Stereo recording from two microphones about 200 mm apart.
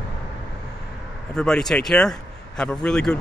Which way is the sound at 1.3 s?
5° left (ahead or behind).